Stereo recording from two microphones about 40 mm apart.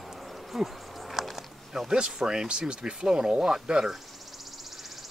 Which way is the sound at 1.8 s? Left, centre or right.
Centre.